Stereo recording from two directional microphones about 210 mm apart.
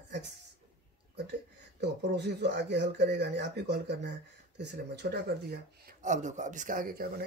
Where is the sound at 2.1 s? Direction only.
55° right (ahead or behind).